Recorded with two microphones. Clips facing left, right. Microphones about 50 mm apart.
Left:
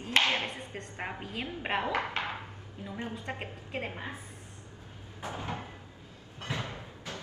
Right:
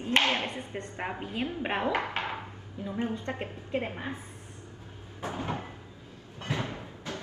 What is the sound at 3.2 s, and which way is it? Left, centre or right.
Speech, left.